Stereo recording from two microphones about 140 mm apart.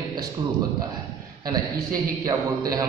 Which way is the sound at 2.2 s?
25° right (ahead or behind).